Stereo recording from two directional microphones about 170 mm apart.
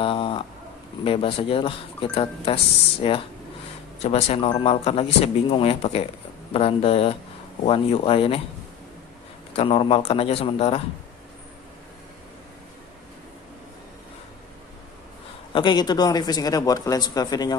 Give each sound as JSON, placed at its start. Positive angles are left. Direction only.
{"t": 0.0, "sound": "a sound", "side_deg": 30}
{"t": 1.0, "sound": "speech", "side_deg": 30}
{"t": 9.5, "sound": "speech", "side_deg": 35}
{"t": 15.5, "sound": "speech", "side_deg": 25}